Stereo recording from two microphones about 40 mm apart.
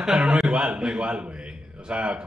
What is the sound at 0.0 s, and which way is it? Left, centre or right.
A man's voice, centre.